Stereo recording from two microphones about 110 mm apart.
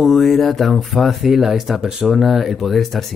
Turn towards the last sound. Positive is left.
turn(degrees=0)  # may be behind; listen again after turning